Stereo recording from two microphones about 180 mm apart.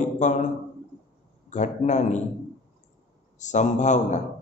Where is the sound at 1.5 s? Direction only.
40° left (ahead or behind).